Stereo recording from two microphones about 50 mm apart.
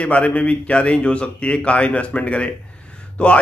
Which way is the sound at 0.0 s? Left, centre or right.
Left.